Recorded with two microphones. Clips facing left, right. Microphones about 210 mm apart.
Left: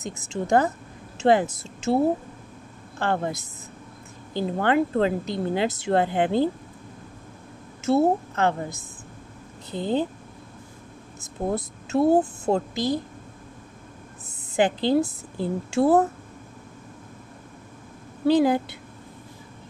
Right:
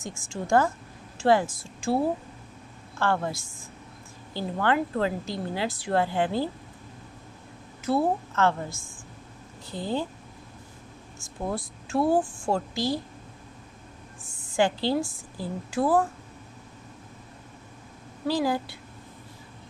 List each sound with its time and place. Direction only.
0.3 s a woman's voice: 20° left (ahead or behind)
7.8 s a woman's voice: 25° left (ahead or behind)
11.1 s a woman's voice: 20° left (ahead or behind)
14.5 s a woman's voice: 20° left (ahead or behind)
18.2 s a woman's voice: 20° left (ahead or behind)